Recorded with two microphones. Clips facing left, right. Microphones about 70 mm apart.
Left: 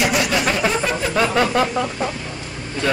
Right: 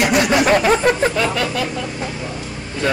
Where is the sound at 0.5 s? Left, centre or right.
Right.